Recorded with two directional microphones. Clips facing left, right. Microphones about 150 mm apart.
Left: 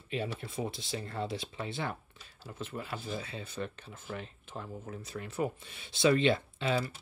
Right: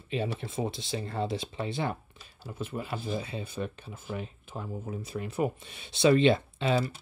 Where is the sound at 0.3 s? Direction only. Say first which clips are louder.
Right 4 dB; 25° right (ahead or behind).